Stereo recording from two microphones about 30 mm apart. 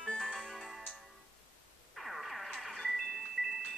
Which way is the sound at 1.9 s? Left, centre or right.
Centre.